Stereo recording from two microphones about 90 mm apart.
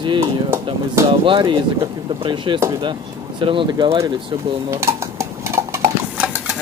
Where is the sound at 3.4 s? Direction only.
70° right (ahead or behind).